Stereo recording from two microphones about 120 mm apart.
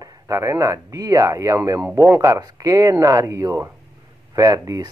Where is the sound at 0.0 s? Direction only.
30° right (ahead or behind).